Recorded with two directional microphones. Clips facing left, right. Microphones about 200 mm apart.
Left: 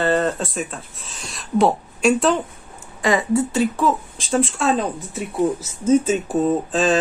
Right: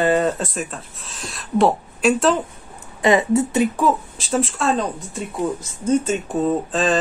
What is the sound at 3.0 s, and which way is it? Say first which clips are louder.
Speech: right 2 dB; 20° right (ahead or behind).